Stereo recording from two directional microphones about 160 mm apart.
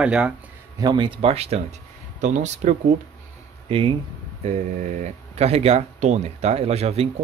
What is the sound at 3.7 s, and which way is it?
Speech, 35° right (ahead or behind).